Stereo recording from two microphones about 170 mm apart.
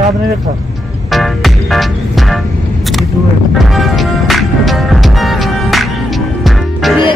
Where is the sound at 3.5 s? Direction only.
Centre (ahead or behind).